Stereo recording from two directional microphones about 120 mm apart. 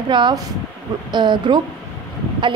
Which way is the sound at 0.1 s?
40° right (ahead or behind).